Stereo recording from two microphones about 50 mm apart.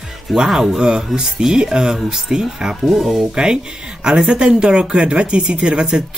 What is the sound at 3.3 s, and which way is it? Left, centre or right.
Speech, centre.